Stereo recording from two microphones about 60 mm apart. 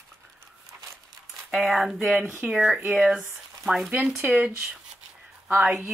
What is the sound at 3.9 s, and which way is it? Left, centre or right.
Speech, centre.